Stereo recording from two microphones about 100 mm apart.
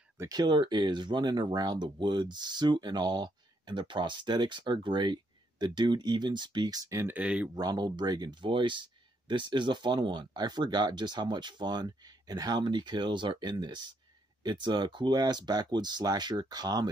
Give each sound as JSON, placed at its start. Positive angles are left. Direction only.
{"t": 0.2, "sound": "speech", "side_deg": -45}
{"t": 7.1, "sound": "speech", "side_deg": -10}
{"t": 7.5, "sound": "speech", "side_deg": -45}